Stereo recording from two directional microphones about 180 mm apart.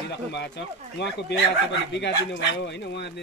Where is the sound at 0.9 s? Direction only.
75° left (ahead or behind).